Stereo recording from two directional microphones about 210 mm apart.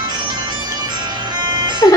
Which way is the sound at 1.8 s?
15° left (ahead or behind).